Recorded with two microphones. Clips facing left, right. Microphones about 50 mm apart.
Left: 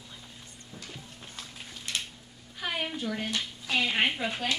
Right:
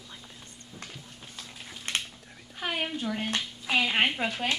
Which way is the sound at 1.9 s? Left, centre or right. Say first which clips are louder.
Right 3 dB; right.